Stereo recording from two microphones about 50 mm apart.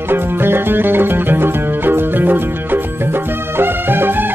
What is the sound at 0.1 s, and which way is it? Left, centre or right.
Music, right.